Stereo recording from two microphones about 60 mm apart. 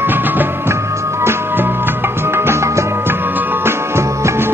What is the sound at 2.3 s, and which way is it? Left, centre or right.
Music, right.